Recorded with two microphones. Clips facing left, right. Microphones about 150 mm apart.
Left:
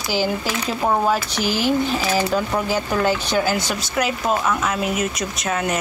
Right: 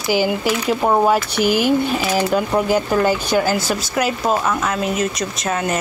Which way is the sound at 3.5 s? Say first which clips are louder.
Right 3 dB; 5° right (ahead or behind).